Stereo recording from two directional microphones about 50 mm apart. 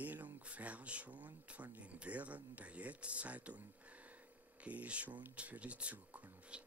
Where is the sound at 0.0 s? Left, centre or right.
Right.